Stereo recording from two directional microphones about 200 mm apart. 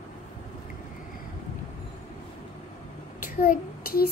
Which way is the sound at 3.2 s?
45° left (ahead or behind).